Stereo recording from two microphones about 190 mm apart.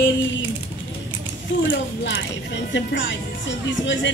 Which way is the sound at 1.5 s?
75° left (ahead or behind).